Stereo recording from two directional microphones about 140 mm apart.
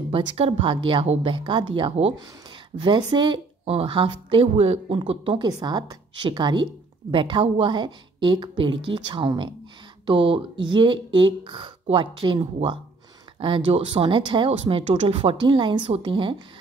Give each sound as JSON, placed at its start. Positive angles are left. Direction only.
{"t": 0.1, "sound": "a woman's voice", "side_deg": -40}